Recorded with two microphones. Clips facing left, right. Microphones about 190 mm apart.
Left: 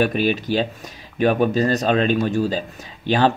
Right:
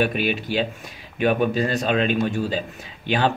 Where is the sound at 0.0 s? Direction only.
40° left (ahead or behind).